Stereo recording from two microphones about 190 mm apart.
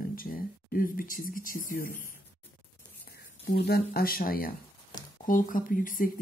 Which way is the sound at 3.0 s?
60° left (ahead or behind).